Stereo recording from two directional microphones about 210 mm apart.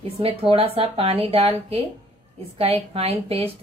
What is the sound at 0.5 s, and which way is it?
A woman's voice, 25° right (ahead or behind).